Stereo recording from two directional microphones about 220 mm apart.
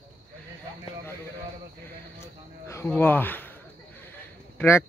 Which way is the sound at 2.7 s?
10° left (ahead or behind).